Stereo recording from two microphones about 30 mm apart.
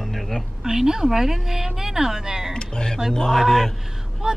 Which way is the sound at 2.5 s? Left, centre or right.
Left.